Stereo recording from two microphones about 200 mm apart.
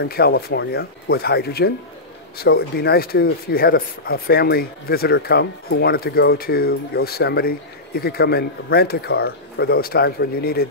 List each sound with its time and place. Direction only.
0.0 s speech: 55° left (ahead or behind)